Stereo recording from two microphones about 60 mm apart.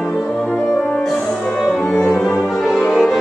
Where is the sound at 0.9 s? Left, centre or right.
Centre.